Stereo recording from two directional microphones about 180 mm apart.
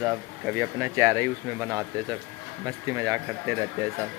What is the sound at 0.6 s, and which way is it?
Speech, 15° right (ahead or behind).